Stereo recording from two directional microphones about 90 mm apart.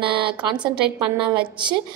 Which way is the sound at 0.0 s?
70° right (ahead or behind).